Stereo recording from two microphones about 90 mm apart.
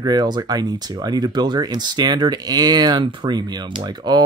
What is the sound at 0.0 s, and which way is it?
Speech, 50° right (ahead or behind).